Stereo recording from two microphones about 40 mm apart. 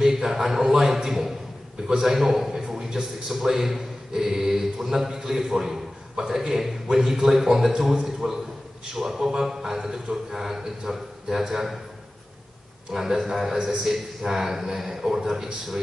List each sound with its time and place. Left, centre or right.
0.0 s a man's voice: centre
12.9 s a man's voice: centre